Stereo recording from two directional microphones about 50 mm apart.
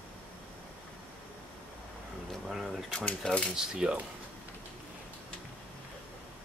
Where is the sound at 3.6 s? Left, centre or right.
Centre.